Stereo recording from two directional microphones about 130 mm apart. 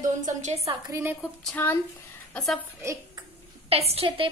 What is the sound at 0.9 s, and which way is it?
Speech, 20° right (ahead or behind).